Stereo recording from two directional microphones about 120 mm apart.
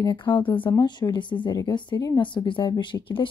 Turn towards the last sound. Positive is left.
turn(degrees=45)  # may be behind; listen again after turning